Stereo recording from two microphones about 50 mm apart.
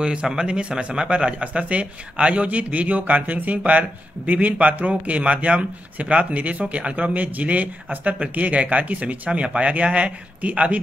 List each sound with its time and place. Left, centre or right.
0.0 s a man's voice: centre